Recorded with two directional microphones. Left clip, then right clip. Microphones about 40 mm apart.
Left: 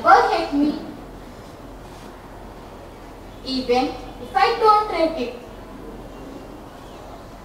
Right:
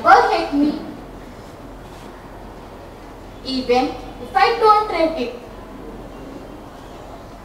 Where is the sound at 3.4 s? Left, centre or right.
Right.